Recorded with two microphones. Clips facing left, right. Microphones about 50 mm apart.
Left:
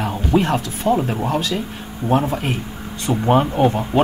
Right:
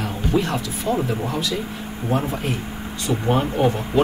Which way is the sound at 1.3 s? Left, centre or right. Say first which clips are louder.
Left 3 dB; left.